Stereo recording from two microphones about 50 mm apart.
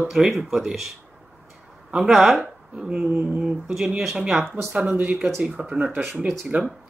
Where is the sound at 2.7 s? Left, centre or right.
Centre.